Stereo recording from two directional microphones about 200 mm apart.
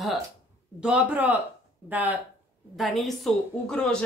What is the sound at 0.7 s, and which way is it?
A man's voice, 5° right (ahead or behind).